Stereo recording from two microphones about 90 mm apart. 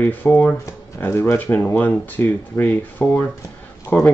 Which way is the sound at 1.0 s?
30° left (ahead or behind).